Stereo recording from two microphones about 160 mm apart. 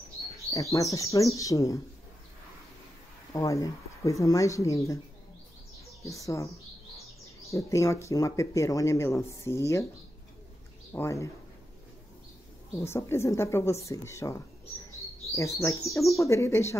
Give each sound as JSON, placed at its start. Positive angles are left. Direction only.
{"t": 0.5, "sound": "speech", "side_deg": 20}
{"t": 3.3, "sound": "speech", "side_deg": 20}
{"t": 6.2, "sound": "speech", "side_deg": 20}
{"t": 10.9, "sound": "speech", "side_deg": 15}
{"t": 12.8, "sound": "a woman's voice", "side_deg": 15}